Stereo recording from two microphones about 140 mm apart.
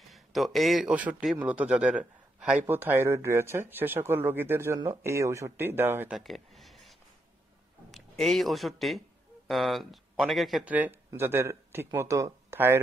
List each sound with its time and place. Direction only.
0.1 s a man's voice: centre (ahead or behind); by 6.1 s 15° right (ahead or behind)
6.1 s a sound: centre (ahead or behind)
7.9 s a man's voice: centre (ahead or behind)
10.7 s a man's voice: 10° right (ahead or behind)